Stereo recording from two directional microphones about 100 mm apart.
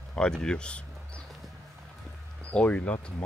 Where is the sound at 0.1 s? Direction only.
10° left (ahead or behind).